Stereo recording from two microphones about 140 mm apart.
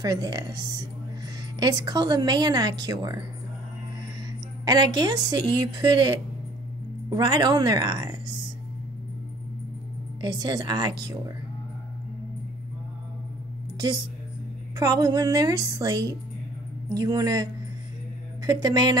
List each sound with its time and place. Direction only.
0.0 s speech: 30° right (ahead or behind)
1.6 s speech: 30° right (ahead or behind)
4.6 s speech: 30° right (ahead or behind)
10.2 s speech: 30° right (ahead or behind)
14.8 s speech: 25° right (ahead or behind)